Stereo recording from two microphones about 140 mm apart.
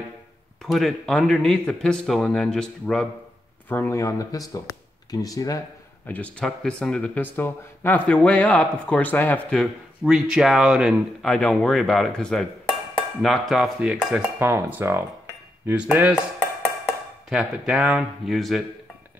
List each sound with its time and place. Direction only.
0.6 s speech: centre (ahead or behind); by 5.6 s 25° left (ahead or behind)
6.0 s speech: 10° left (ahead or behind)
9.6 s speech: 5° right (ahead or behind)
11.2 s speech: 5° left (ahead or behind)
14.4 s speech: 15° right (ahead or behind)
17.3 s speech: 5° right (ahead or behind)